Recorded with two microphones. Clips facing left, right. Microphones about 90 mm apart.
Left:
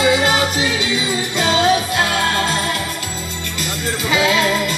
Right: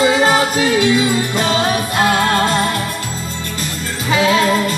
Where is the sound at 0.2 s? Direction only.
40° right (ahead or behind).